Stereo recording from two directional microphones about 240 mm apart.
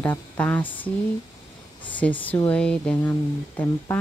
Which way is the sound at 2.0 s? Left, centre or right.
Centre.